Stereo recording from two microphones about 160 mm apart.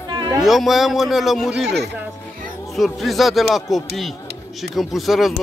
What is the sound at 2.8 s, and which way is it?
A man's voice, centre (ahead or behind).